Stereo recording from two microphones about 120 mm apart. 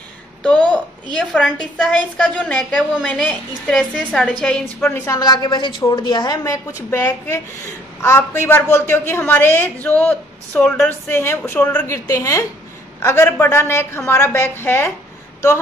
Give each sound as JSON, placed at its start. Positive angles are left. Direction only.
{"t": 0.4, "sound": "a sound", "side_deg": 10}
{"t": 1.1, "sound": "a woman's voice", "side_deg": 5}
{"t": 5.1, "sound": "a woman's voice", "side_deg": 35}